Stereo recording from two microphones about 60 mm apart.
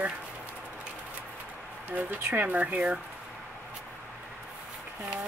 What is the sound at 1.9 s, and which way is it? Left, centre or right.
Speech, right.